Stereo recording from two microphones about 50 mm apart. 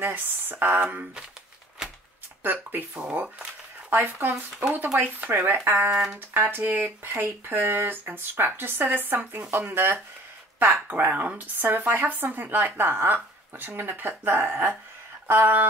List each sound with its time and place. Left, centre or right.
0.0 s speech: right
1.8 s a sound: centre
2.4 s speech: right
3.0 s speech: right
3.9 s speech: right
10.9 s speech: right
15.2 s a sound: right